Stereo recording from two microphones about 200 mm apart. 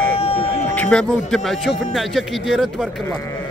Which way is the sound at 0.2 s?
30° left (ahead or behind).